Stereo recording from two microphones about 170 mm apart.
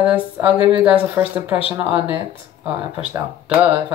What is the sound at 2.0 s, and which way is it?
Speech, 30° left (ahead or behind).